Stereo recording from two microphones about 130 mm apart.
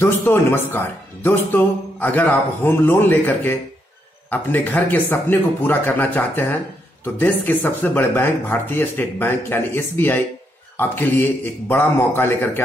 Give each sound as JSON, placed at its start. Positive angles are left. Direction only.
{"t": 0.0, "sound": "speech", "side_deg": 15}